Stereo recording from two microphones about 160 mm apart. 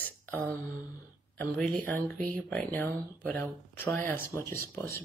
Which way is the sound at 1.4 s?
10° left (ahead or behind).